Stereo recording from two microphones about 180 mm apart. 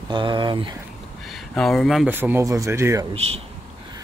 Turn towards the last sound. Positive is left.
turn(degrees=-35)  # may be behind; listen again after turning